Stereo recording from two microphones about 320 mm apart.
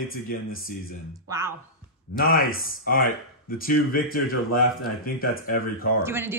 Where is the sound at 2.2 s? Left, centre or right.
Left.